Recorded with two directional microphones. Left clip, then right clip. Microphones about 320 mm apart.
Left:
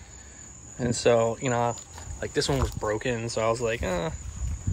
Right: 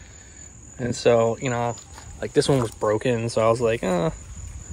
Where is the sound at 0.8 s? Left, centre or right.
Centre.